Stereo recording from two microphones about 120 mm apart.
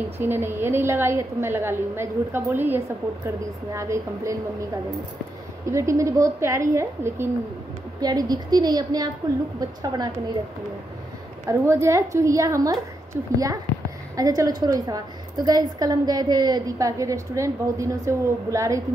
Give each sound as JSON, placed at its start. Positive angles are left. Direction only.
{"t": 0.2, "sound": "a woman's voice", "side_deg": -20}
{"t": 5.7, "sound": "a woman's voice", "side_deg": -25}
{"t": 8.0, "sound": "a woman's voice", "side_deg": -35}
{"t": 11.4, "sound": "a woman's voice", "side_deg": -20}